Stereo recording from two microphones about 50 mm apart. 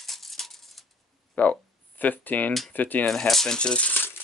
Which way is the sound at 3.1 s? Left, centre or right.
Centre.